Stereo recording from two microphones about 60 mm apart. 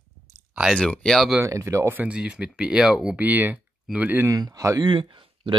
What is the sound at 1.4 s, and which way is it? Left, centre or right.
Speech, right.